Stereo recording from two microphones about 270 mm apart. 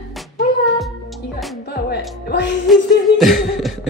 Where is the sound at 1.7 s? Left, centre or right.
Left.